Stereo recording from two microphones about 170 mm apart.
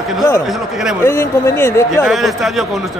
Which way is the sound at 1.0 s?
15° left (ahead or behind).